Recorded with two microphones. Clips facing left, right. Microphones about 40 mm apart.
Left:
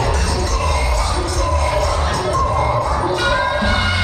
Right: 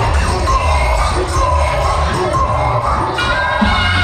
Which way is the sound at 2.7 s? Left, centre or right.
Right.